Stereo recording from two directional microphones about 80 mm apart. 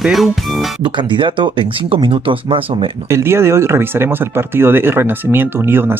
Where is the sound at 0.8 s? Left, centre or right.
Right.